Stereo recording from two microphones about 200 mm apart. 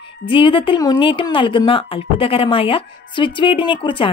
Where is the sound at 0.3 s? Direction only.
25° left (ahead or behind).